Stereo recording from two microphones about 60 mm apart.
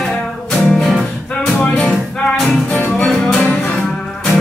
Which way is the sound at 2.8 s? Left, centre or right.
Centre.